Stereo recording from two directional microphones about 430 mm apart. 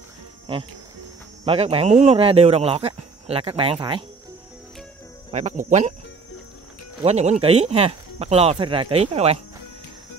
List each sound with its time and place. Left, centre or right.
1.4 s speech: centre
5.3 s speech: centre
7.0 s speech: centre